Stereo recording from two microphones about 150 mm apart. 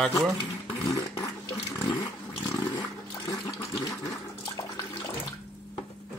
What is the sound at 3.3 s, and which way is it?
Sewing machine, 20° left (ahead or behind).